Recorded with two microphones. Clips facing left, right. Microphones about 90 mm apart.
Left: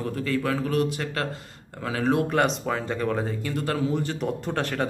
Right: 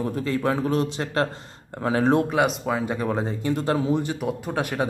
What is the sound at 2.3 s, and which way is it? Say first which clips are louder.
A man's voice: right 1 dB; 5° right (ahead or behind).